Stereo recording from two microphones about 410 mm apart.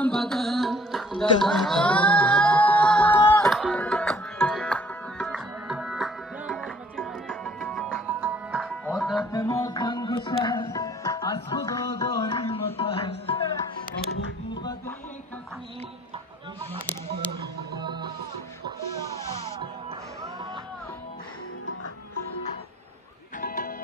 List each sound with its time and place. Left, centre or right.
0.0 s music: centre
14.5 s music: centre
17.8 s music: centre
23.4 s music: left